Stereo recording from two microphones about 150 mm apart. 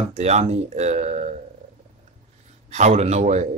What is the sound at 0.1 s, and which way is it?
A man's voice, 45° right (ahead or behind).